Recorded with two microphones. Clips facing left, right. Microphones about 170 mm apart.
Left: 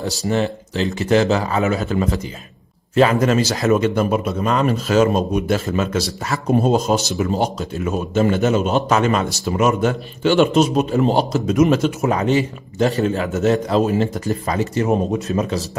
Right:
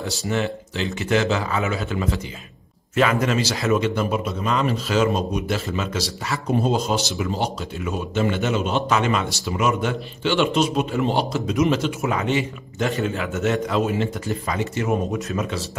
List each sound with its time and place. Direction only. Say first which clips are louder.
0.0 s speech: left 4 dB; 40° left (ahead or behind)